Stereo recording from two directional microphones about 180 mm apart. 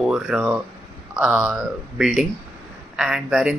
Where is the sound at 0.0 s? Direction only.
5° right (ahead or behind).